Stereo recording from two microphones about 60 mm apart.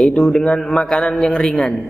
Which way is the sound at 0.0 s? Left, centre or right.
Centre.